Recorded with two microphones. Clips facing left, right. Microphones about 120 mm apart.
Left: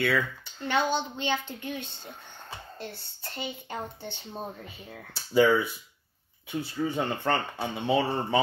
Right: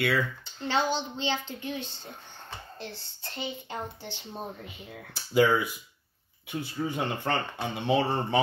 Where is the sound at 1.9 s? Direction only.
15° left (ahead or behind).